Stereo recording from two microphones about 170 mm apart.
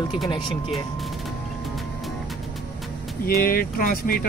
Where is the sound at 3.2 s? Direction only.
60° left (ahead or behind).